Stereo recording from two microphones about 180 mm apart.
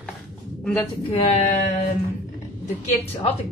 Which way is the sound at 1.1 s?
35° left (ahead or behind).